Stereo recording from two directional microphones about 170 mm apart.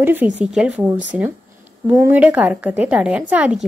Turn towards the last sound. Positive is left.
turn(degrees=-10)  # may be behind; listen again after turning